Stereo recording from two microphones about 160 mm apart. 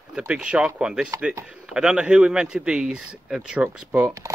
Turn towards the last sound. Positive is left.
turn(degrees=-10)  # may be behind; listen again after turning